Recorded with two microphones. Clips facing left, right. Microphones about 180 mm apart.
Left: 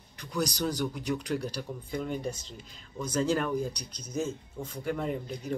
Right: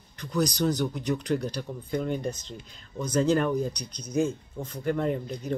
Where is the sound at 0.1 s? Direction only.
10° left (ahead or behind).